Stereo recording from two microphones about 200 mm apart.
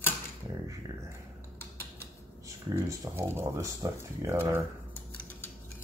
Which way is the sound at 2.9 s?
15° right (ahead or behind).